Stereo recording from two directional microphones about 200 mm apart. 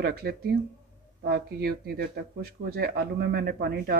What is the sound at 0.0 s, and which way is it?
Speech, 50° right (ahead or behind).